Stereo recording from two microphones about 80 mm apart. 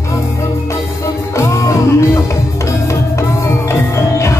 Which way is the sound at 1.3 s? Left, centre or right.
Left.